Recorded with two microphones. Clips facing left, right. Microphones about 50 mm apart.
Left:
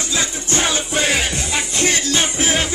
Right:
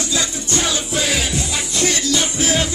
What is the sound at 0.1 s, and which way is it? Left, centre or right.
Music, left.